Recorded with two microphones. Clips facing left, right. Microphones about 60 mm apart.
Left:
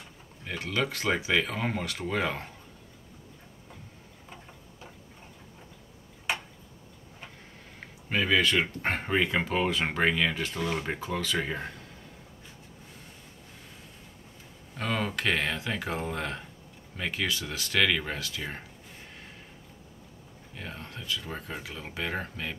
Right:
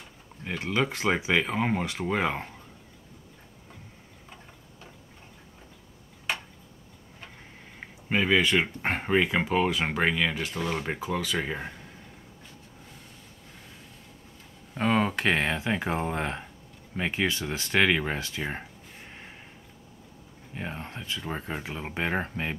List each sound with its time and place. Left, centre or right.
0.5 s speech: centre
8.1 s speech: centre
14.7 s speech: right
20.5 s speech: right